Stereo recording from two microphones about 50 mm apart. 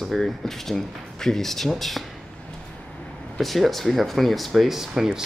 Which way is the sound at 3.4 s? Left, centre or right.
Centre.